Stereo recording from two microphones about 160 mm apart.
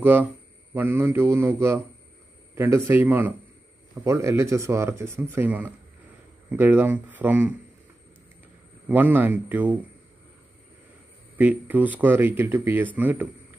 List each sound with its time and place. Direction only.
0.0 s speech: 10° right (ahead or behind)
8.8 s speech: 10° right (ahead or behind)
11.3 s speech: 10° right (ahead or behind)